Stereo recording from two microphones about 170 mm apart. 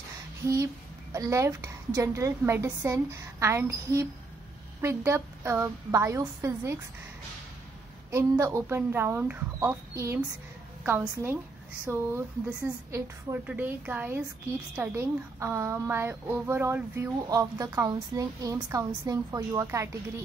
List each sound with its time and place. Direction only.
1.1 s a woman's voice: 20° right (ahead or behind)
8.1 s a woman's voice: 15° right (ahead or behind)